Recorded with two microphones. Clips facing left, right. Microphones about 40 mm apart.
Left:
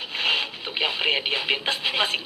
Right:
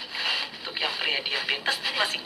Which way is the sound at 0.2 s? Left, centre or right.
Left.